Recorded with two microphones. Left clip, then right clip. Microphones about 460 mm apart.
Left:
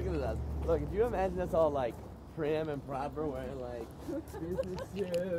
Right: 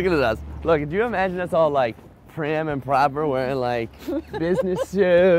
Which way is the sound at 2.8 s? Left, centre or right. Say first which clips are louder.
Right 17 dB; right.